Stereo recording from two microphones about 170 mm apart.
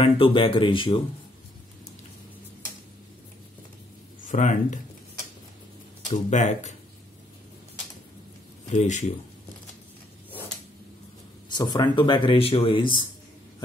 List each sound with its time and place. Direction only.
0.0 s speech: 30° left (ahead or behind)
4.3 s speech: 45° left (ahead or behind)
6.0 s speech: 45° left (ahead or behind)
8.7 s speech: 45° left (ahead or behind)
11.4 s speech: 25° left (ahead or behind)